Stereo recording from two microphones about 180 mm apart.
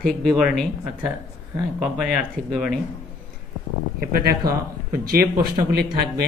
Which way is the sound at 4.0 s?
55° right (ahead or behind).